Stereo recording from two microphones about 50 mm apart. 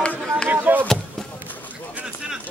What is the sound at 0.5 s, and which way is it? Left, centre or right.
Chop, right.